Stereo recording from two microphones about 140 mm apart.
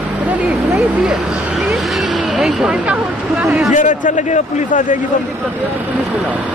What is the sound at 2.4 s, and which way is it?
Speech, 5° right (ahead or behind).